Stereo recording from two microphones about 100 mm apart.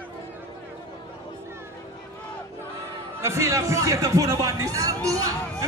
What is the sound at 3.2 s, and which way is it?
Speech, 30° right (ahead or behind).